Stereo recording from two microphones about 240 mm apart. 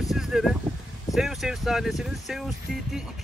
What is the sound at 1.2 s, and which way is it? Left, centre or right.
Speech, centre.